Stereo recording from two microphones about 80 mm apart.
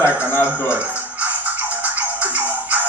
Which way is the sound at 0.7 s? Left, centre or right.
Centre.